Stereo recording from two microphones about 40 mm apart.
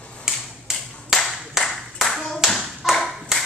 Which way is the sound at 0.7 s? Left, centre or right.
Centre.